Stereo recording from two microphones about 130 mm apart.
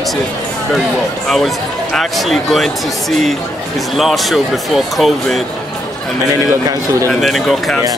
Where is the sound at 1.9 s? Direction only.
Centre (ahead or behind).